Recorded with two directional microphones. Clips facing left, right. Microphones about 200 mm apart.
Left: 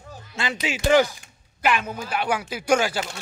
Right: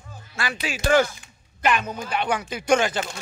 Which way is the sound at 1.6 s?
5° left (ahead or behind).